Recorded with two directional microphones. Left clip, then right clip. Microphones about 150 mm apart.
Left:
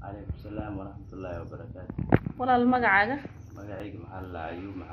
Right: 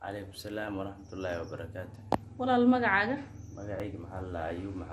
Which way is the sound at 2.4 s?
25° left (ahead or behind).